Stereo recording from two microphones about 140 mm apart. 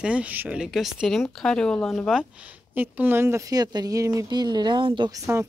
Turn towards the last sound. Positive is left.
turn(degrees=-20)  # may be behind; listen again after turning